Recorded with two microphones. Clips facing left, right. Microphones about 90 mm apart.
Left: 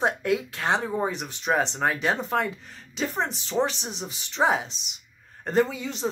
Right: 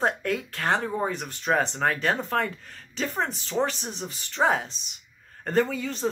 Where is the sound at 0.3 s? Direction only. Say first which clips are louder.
Left 1 dB; 5° left (ahead or behind).